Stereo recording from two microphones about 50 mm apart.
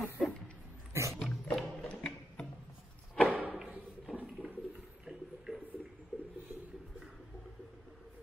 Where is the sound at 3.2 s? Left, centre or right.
Right.